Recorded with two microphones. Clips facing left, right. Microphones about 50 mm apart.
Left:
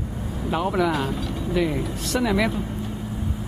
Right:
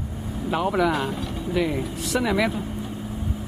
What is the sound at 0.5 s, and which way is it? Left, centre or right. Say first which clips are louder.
Speech: even; centre.